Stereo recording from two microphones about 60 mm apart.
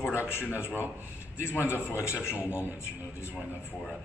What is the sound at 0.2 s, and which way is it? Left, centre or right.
Speech, left.